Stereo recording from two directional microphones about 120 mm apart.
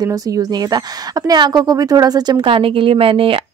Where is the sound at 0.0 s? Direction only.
30° right (ahead or behind).